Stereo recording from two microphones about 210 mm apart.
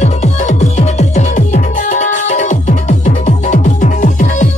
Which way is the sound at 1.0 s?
35° left (ahead or behind).